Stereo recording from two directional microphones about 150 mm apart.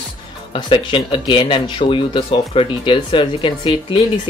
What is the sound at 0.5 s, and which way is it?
Speech, 35° left (ahead or behind).